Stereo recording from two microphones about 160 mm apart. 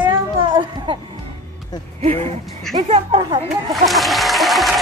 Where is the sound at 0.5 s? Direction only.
30° right (ahead or behind).